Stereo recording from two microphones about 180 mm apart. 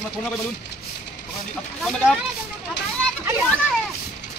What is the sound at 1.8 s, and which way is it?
Speech, centre (ahead or behind).